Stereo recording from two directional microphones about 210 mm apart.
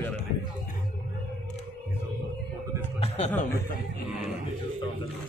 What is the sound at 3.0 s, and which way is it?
Chuckle, 30° left (ahead or behind).